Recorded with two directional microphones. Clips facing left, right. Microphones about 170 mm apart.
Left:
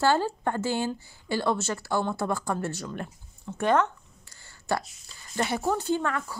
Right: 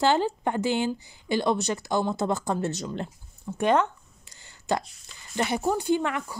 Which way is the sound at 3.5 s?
15° right (ahead or behind).